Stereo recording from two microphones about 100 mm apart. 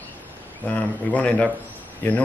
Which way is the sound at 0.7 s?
15° left (ahead or behind).